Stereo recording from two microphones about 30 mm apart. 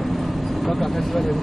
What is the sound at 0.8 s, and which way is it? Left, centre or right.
Speech, centre.